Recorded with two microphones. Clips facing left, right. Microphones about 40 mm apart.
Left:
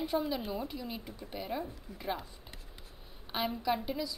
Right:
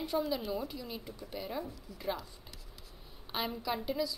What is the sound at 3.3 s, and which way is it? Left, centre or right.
Speech, centre.